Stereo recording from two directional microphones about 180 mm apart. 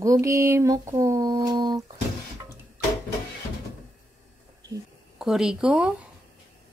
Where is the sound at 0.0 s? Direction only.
15° right (ahead or behind).